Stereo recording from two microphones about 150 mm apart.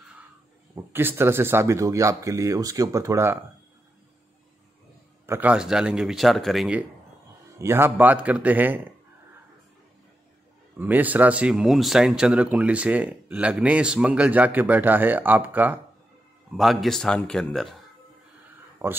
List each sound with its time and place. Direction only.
0.7 s speech: 15° right (ahead or behind)
5.2 s speech: 15° right (ahead or behind)
7.5 s speech: 15° right (ahead or behind)
10.8 s speech: 10° right (ahead or behind)
16.5 s speech: centre (ahead or behind)
18.8 s speech: 15° right (ahead or behind)